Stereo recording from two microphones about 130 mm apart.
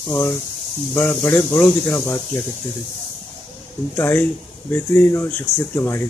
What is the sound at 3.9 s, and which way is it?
Speech, 15° left (ahead or behind).